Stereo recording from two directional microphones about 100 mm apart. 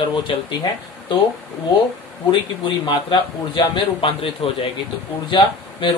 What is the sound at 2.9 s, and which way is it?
A man's voice, 55° left (ahead or behind).